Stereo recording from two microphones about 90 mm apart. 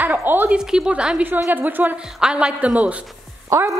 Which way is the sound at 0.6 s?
5° right (ahead or behind).